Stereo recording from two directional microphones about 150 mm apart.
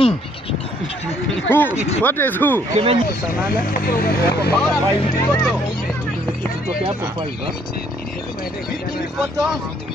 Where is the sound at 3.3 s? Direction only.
75° left (ahead or behind); by 4.5 s 90° left.